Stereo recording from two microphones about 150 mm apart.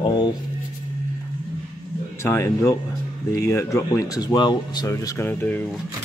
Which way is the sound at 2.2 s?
20° left (ahead or behind).